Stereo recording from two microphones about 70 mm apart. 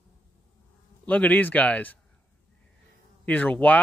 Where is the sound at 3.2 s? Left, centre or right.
Left.